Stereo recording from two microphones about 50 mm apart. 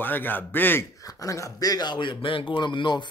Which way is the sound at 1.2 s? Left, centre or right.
Left.